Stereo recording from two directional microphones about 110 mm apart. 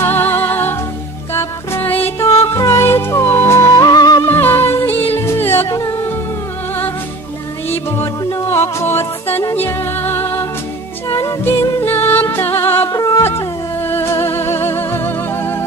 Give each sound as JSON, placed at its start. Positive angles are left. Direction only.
{"t": 0.0, "sound": "music", "side_deg": 20}
{"t": 3.7, "sound": "music", "side_deg": 35}
{"t": 4.2, "sound": "music", "side_deg": 20}
{"t": 7.7, "sound": "music", "side_deg": 25}
{"t": 12.9, "sound": "music", "side_deg": 35}